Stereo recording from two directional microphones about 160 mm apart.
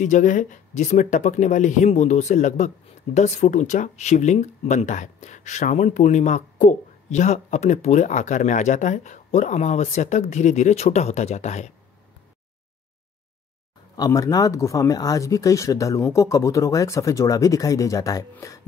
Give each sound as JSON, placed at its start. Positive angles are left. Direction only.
{"t": 0.0, "sound": "speech", "side_deg": 50}
{"t": 13.9, "sound": "speech", "side_deg": 25}